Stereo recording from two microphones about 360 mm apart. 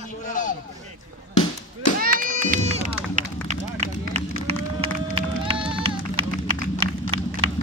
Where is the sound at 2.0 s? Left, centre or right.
Right.